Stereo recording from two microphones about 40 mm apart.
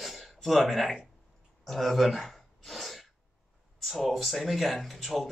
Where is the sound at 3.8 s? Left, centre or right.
Centre.